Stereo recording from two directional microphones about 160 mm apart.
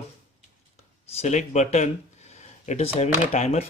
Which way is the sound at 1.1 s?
45° left (ahead or behind).